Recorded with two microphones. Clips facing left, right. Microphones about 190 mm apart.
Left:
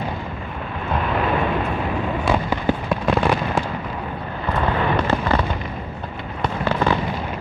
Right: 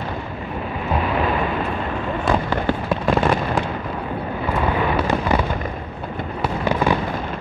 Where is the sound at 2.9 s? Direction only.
Centre (ahead or behind).